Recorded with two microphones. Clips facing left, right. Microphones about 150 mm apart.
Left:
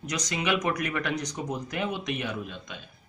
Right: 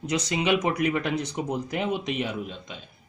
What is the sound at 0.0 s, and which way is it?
Speech, 25° right (ahead or behind).